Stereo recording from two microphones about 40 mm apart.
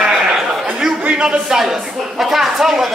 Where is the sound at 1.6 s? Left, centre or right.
Centre.